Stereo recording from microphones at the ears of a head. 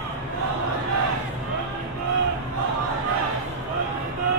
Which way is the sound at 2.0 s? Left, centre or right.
Right.